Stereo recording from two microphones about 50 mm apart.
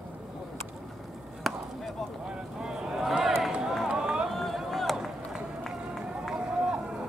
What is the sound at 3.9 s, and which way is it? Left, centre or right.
Run, centre.